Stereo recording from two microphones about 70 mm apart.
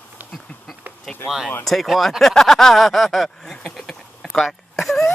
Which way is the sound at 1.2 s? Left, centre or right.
Centre.